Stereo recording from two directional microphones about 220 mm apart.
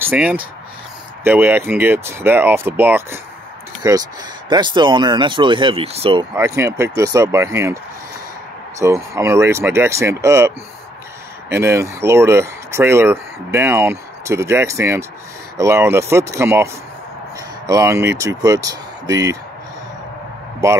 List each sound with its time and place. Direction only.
0.0 s speech: 5° right (ahead or behind); by 6.2 s 25° right (ahead or behind)
6.3 s speech: 10° right (ahead or behind)
17.6 s speech: 15° right (ahead or behind)